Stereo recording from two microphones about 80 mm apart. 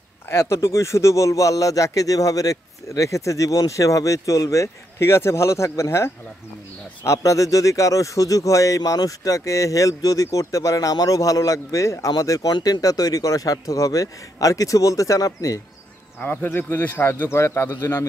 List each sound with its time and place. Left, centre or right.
0.3 s speech: left
12.5 s speech: left
16.2 s speech: left